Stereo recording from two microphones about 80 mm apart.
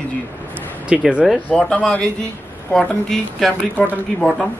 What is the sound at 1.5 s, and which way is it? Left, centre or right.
Speech, centre.